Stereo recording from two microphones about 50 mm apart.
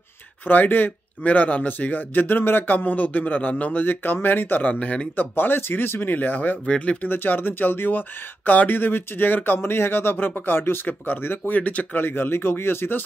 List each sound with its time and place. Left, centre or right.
0.5 s speech: left
4.7 s speech: left
5.1 s speech: left
6.6 s speech: centre
7.0 s speech: left
12.0 s speech: left